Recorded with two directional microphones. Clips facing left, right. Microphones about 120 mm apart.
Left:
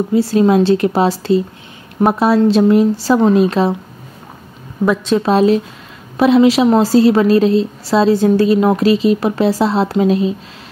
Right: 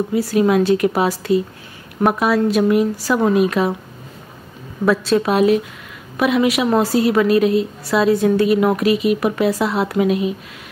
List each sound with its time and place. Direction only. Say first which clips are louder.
0.1 s a woman's voice: left 4 dB; 30° left (ahead or behind)
4.8 s a woman's voice: left 1 dB; 20° left (ahead or behind)
5.2 s a woman's voice: left 3 dB; 30° left (ahead or behind)